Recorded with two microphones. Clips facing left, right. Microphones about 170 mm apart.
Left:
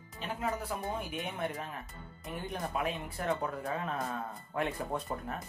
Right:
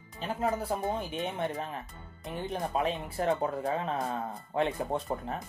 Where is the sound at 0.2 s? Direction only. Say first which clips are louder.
Right 5 dB; 30° right (ahead or behind).